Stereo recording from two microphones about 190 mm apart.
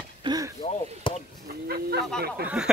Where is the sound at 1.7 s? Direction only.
55° right (ahead or behind).